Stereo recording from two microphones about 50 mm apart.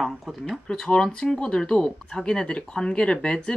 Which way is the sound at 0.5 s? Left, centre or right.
Centre.